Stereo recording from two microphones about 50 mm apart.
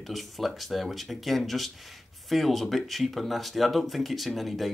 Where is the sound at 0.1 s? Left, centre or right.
Centre.